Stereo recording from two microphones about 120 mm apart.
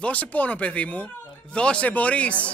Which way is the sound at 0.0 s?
10° left (ahead or behind).